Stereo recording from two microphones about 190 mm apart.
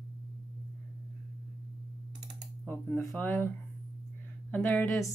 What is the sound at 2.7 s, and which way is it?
Speech, 5° left (ahead or behind).